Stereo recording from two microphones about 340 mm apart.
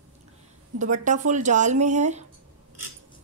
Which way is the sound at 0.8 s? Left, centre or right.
Right.